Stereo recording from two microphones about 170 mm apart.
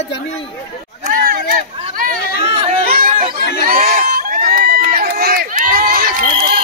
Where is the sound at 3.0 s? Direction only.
50° right (ahead or behind).